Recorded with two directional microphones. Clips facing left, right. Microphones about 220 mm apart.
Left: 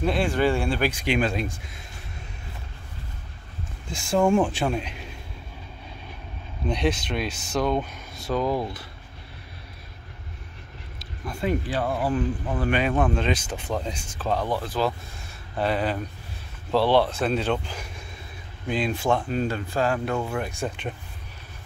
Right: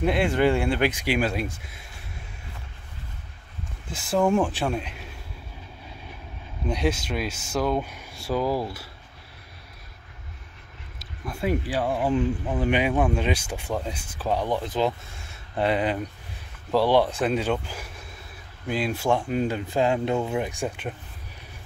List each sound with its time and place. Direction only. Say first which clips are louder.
0.0 s speech: right 1 dB; 20° right (ahead or behind)
1.0 s speech: left 1 dB; 5° right (ahead or behind)
3.9 s speech: left 1 dB; 5° right (ahead or behind)
6.6 s speech: left 1 dB; 5° right (ahead or behind)
11.0 s speech: even; 5° right (ahead or behind)